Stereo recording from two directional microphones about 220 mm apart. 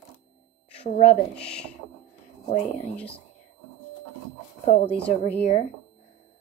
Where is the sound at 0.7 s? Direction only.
30° left (ahead or behind).